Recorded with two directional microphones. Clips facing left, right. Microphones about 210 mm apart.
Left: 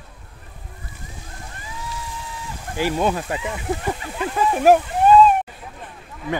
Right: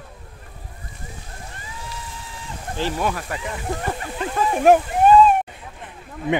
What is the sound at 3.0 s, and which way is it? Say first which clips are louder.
Speech: left 3 dB; 20° left (ahead or behind).